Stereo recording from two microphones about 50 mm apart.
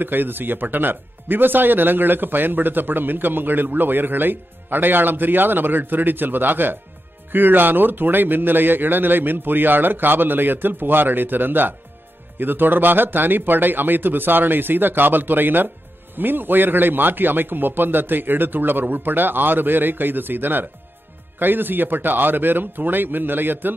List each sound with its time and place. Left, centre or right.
0.0 s speech: right